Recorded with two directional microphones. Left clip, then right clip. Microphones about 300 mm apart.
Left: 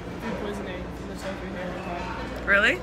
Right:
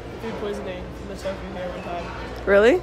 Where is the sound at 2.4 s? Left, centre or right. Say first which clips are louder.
Right 5 dB; centre.